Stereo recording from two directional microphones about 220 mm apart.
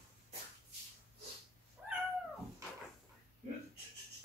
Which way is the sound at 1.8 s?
5° right (ahead or behind).